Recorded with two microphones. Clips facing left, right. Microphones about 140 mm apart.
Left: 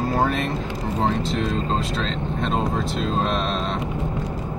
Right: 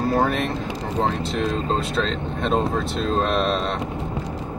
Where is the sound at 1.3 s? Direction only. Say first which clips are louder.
Right 1 dB; centre (ahead or behind).